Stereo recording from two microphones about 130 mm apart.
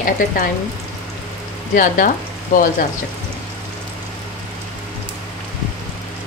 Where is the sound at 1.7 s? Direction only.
90° left.